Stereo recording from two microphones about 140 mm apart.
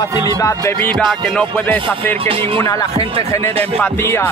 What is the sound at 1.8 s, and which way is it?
Music, 40° right (ahead or behind).